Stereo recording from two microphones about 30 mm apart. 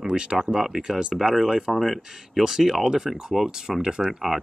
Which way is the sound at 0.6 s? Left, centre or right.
Centre.